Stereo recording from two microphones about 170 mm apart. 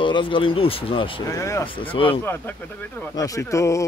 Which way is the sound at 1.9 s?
30° left (ahead or behind).